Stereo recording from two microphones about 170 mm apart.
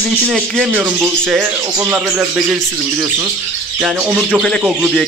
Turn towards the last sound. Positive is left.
turn(degrees=0)  # may be behind; listen again after turning